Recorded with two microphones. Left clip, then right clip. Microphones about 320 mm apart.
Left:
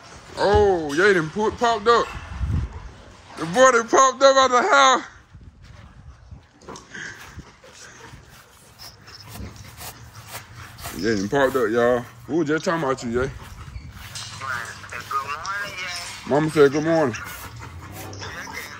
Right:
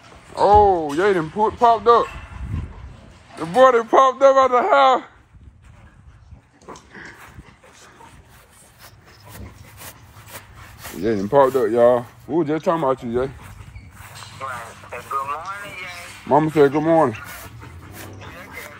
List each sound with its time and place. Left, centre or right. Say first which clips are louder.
0.4 s speech: right 5 dB; centre
3.3 s a man's voice: right 2 dB; centre
11.0 s speech: right 5 dB; centre
14.0 s a sound: left 1 dB; centre
16.3 s speech: right 2 dB; centre
18.2 s music: left 8 dB; centre